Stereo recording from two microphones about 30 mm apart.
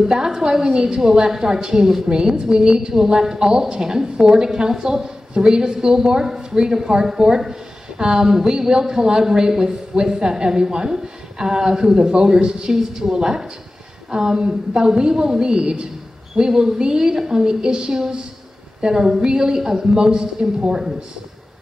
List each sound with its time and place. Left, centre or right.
0.0 s a woman's voice: centre
19.9 s a woman's voice: right